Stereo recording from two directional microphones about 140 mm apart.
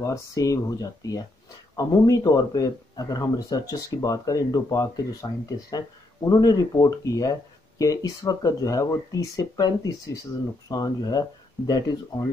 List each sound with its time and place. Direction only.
0.0 s speech: 25° left (ahead or behind)